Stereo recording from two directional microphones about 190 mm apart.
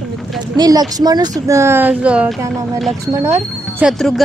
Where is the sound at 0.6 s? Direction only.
20° right (ahead or behind).